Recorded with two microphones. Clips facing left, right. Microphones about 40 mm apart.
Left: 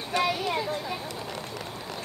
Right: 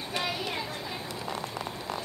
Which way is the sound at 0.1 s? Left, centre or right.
Left.